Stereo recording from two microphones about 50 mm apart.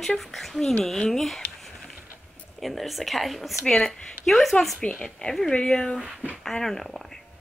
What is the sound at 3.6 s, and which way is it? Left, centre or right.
Speech, centre.